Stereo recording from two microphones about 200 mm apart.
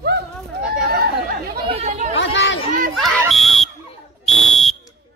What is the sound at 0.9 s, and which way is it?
Chatter, 50° right (ahead or behind).